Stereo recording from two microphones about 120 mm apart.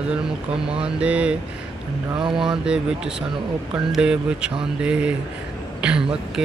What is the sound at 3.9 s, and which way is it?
Speech, 10° right (ahead or behind).